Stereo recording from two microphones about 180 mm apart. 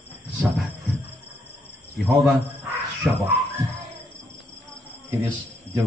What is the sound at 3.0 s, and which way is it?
Speech, 5° right (ahead or behind).